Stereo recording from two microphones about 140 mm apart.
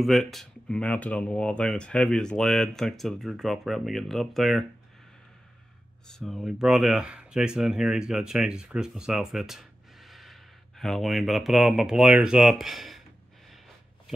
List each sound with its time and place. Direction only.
0.0 s speech: centre (ahead or behind)
6.0 s speech: 5° left (ahead or behind)